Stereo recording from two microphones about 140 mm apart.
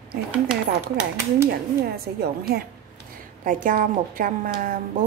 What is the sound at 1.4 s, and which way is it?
Speech, 90° right.